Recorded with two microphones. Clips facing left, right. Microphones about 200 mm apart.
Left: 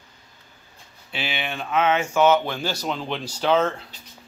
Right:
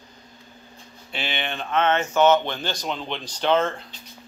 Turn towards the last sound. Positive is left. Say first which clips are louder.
# left 1 dB
turn(degrees=5)  # may be behind; listen again after turning